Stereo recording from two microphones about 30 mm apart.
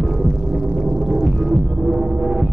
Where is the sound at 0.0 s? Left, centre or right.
Centre.